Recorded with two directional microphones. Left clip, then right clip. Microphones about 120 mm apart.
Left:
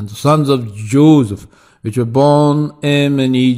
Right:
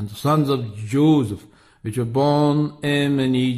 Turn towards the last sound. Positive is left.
turn(degrees=40)  # may be behind; listen again after turning